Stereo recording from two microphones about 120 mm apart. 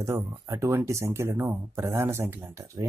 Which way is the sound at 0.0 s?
25° right (ahead or behind).